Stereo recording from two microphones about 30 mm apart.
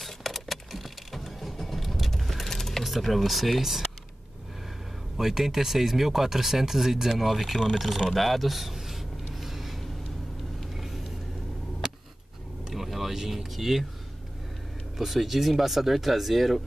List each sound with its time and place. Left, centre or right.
0.0 s vehicle: centre
2.8 s speech: centre
5.1 s speech: centre
8.1 s a sound: centre
10.7 s vehicle: centre
11.8 s a sound: right
12.6 s vehicle: centre
13.2 s a sound: centre
15.0 s speech: centre